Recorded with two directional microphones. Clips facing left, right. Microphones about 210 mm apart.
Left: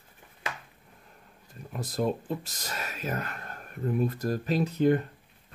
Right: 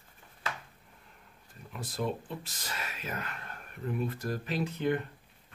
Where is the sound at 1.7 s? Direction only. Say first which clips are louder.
Left 5 dB; 40° left (ahead or behind).